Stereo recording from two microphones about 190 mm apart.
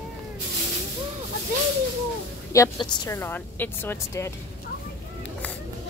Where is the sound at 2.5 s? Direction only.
15° left (ahead or behind).